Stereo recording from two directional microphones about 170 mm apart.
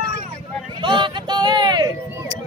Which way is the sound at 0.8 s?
30° right (ahead or behind).